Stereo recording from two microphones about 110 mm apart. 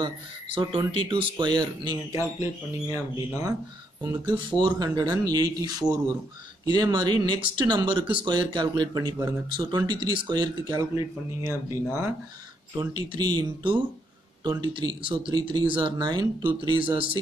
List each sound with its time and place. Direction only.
0.6 s speech: 50° right (ahead or behind)
2.1 s speech: 25° right (ahead or behind)
4.4 s speech: 45° right (ahead or behind)
11.4 s speech: 25° right (ahead or behind)
12.7 s speech: 45° right (ahead or behind)